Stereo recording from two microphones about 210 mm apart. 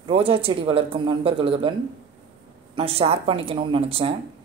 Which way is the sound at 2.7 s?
25° right (ahead or behind).